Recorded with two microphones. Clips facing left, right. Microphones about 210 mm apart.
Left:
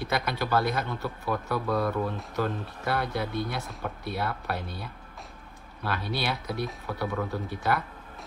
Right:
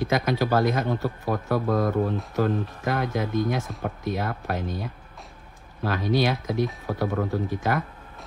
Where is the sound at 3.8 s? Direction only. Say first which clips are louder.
Right 4 dB; 45° right (ahead or behind).